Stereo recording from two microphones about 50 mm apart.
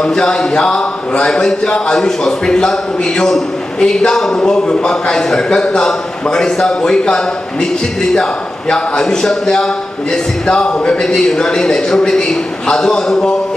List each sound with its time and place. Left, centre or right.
0.0 s a man's voice: centre